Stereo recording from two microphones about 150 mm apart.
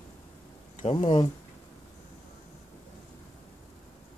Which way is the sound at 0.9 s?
35° left (ahead or behind).